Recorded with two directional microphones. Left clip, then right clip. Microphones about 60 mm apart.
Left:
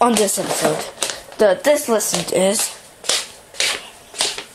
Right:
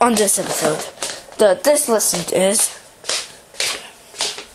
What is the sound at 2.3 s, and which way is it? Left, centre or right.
Speech, right.